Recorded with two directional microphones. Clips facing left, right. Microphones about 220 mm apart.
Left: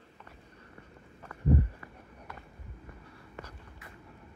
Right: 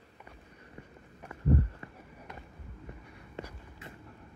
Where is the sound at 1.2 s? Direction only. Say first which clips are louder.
Left 1 dB; 20° right (ahead or behind).